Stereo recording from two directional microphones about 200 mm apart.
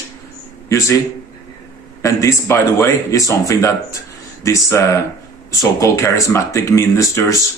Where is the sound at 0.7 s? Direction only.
15° left (ahead or behind).